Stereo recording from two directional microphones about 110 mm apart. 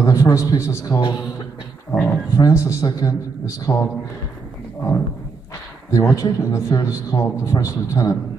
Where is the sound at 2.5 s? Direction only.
25° left (ahead or behind).